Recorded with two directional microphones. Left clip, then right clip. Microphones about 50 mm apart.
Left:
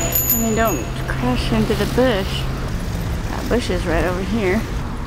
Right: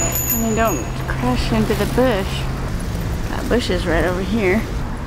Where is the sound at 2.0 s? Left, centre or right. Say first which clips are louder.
Left 1 dB; centre.